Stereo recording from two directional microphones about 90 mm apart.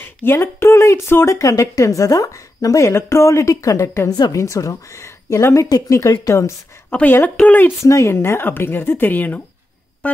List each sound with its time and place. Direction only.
0.0 s speech: 25° left (ahead or behind)
4.1 s a woman's voice: 50° left (ahead or behind)
4.4 s speech: 35° left (ahead or behind)
6.9 s a woman's voice: 15° left (ahead or behind)
7.8 s speech: 35° left (ahead or behind)
10.0 s music: 15° left (ahead or behind)